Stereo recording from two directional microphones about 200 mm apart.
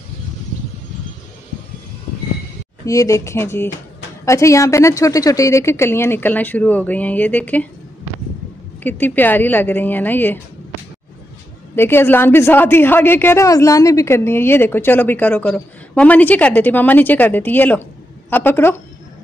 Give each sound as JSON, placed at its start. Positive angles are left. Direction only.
{"t": 2.8, "sound": "a woman's voice", "side_deg": 15}
{"t": 8.8, "sound": "a woman's voice", "side_deg": 10}
{"t": 11.7, "sound": "a woman's voice", "side_deg": 10}